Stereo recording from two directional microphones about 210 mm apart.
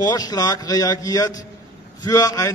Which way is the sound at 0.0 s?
20° left (ahead or behind).